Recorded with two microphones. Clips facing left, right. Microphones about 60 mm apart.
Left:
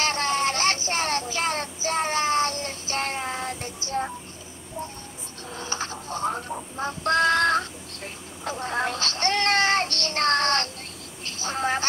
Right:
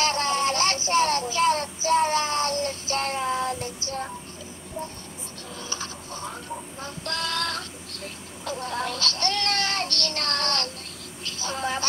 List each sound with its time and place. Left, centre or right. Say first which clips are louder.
0.0 s child singing: even; left
5.6 s synthetic singing: left 5 dB; left
11.4 s speech: left 3 dB; left